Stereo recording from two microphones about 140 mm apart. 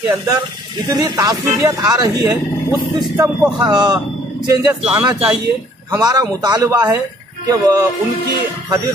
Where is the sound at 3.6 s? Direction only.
30° right (ahead or behind).